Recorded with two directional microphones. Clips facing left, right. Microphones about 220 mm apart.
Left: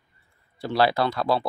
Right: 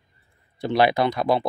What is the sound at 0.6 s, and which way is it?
Speech, 20° right (ahead or behind).